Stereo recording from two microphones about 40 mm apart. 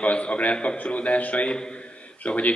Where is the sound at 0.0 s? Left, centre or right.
Left.